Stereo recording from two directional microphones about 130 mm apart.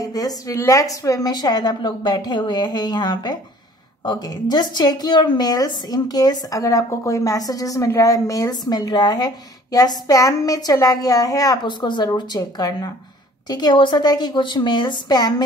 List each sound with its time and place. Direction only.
0.0 s a woman's voice: 30° left (ahead or behind)